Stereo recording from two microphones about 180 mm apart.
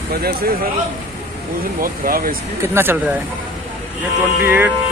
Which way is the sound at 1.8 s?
55° right (ahead or behind).